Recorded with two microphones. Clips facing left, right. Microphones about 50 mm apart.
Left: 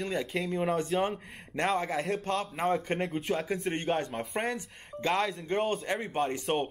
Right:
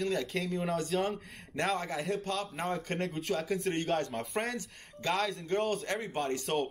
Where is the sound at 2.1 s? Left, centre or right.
Left.